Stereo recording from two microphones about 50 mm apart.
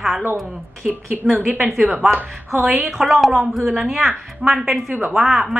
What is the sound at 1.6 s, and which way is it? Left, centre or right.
A woman's voice, centre.